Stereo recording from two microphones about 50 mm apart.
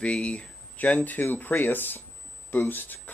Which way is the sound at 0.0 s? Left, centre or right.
Left.